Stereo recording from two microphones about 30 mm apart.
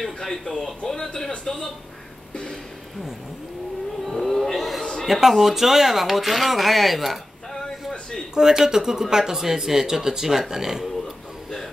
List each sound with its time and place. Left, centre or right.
0.0 s speech: centre
4.0 s a sound: centre
5.0 s speech: centre
8.4 s speech: centre